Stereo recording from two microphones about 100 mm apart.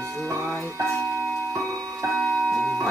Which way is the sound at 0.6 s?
30° right (ahead or behind).